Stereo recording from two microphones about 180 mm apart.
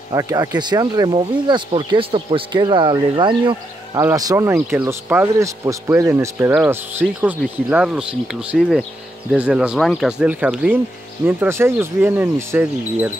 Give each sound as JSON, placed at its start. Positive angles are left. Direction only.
{"t": 0.1, "sound": "speech", "side_deg": -20}